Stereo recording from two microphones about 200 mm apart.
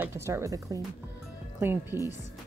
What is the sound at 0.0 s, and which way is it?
A woman's voice, 15° right (ahead or behind).